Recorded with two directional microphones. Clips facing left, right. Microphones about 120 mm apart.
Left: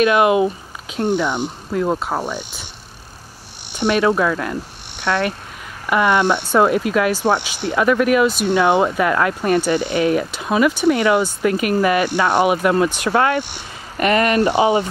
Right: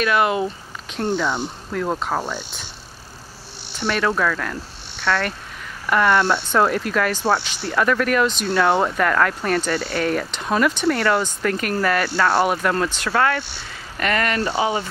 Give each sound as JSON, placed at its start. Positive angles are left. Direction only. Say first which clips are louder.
{"t": 0.0, "sound": "speech", "louder": "left 5 dB", "side_deg": 15}
{"t": 3.7, "sound": "speech", "louder": "left 5 dB", "side_deg": 15}